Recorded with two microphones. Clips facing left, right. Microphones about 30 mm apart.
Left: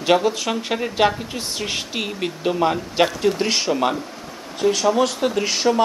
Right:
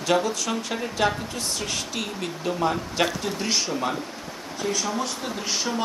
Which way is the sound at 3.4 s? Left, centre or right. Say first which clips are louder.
Left 6 dB; left.